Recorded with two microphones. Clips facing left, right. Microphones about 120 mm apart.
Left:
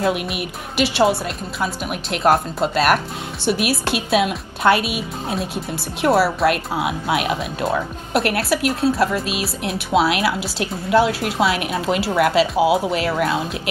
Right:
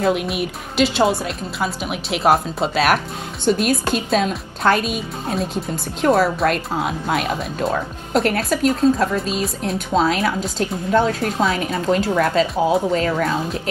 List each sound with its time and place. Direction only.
0.0 s a woman's voice: centre (ahead or behind)
9.2 s speech: 75° left (ahead or behind)
9.8 s speech: 10° left (ahead or behind)